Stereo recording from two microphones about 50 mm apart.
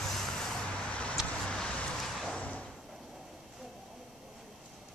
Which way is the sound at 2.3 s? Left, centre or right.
Left.